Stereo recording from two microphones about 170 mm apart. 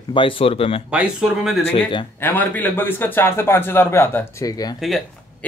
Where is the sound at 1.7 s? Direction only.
30° left (ahead or behind).